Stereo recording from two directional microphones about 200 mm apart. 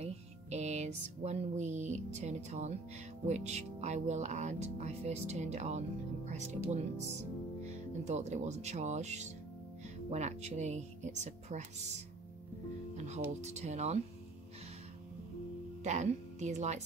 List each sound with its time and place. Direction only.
0.0 s music: 35° right (ahead or behind)
3.3 s speech: 35° right (ahead or behind)
15.8 s speech: 35° right (ahead or behind)